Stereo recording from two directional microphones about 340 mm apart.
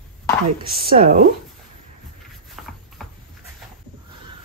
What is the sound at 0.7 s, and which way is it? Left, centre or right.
Speech, right.